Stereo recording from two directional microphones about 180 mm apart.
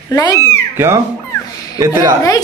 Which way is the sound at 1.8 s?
15° right (ahead or behind).